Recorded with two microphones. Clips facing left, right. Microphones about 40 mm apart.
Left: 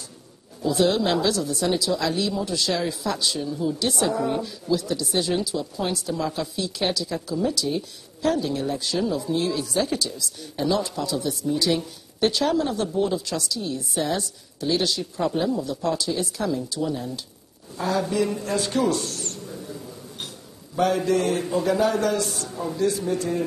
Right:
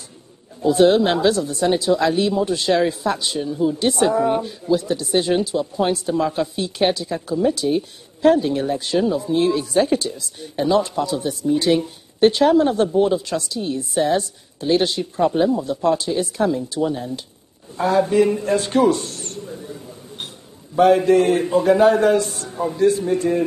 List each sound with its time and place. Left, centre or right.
0.6 s speech: right
18.9 s a sound: right
19.5 s mouse: centre
20.7 s a man's voice: right